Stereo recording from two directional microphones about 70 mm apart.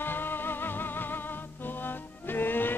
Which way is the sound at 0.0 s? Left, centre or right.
Left.